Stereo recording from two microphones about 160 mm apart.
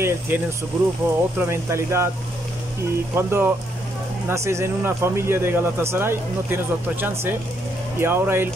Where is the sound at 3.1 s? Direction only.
15° right (ahead or behind).